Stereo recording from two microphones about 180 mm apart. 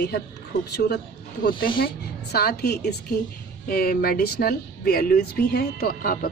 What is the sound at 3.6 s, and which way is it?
Speech, 55° left (ahead or behind).